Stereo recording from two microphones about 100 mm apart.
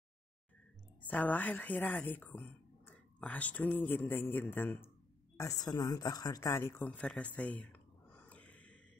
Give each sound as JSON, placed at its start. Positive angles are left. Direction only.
{"t": 1.0, "sound": "speech", "side_deg": 15}
{"t": 5.4, "sound": "a woman's voice", "side_deg": 40}
{"t": 6.5, "sound": "speech", "side_deg": 25}
{"t": 6.9, "sound": "a sound", "side_deg": 10}